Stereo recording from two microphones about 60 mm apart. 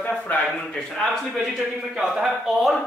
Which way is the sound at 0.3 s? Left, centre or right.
Left.